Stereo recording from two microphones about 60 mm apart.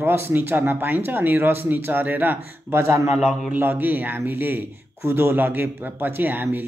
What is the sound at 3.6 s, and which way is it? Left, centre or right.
A man's voice, right.